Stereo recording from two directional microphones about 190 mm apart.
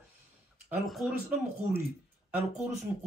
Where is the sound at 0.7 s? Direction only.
Centre (ahead or behind).